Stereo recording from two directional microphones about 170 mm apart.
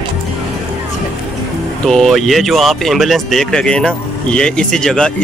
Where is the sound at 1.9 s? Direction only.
Centre (ahead or behind).